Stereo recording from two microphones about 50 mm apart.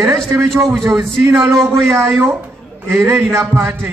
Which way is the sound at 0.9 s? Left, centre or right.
Right.